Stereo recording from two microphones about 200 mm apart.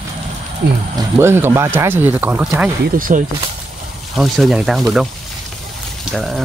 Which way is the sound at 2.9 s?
45° right (ahead or behind).